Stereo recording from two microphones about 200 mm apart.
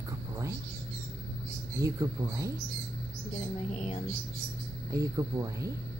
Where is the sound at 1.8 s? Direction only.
15° right (ahead or behind).